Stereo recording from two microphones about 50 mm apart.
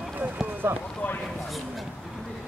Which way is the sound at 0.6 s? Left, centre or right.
Right.